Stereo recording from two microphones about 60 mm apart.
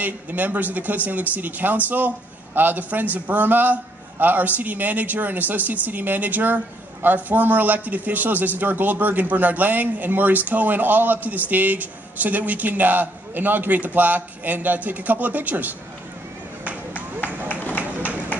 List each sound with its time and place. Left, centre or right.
0.0 s a man's voice: right
16.9 s run: left